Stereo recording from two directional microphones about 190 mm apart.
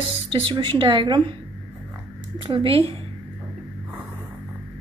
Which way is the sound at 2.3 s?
25° right (ahead or behind).